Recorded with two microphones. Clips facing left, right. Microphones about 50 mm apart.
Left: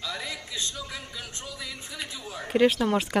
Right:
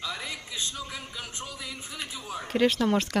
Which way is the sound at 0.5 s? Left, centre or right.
Centre.